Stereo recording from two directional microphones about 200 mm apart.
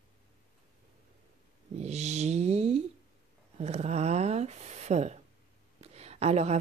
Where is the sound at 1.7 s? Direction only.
35° right (ahead or behind).